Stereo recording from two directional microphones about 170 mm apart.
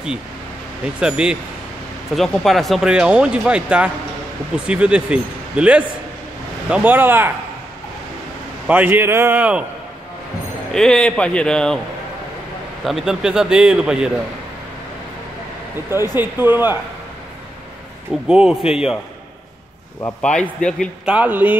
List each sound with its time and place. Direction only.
0.9 s speech: 5° right (ahead or behind)
8.6 s speech: 10° right (ahead or behind)
10.7 s speech: 5° left (ahead or behind)
12.8 s speech: centre (ahead or behind)
16.2 s speech: 10° right (ahead or behind)
18.2 s speech: 5° right (ahead or behind)
20.2 s speech: 5° left (ahead or behind)
21.0 s speech: 5° right (ahead or behind)